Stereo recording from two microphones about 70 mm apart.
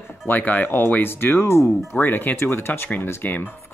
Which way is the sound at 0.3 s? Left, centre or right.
Left.